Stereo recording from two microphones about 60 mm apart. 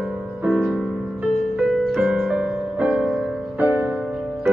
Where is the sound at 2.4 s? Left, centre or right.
Right.